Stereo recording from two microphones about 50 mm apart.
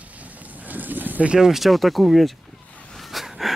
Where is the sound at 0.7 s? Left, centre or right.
Right.